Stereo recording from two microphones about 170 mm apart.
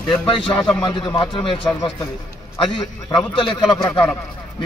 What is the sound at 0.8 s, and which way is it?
Speech, 25° left (ahead or behind).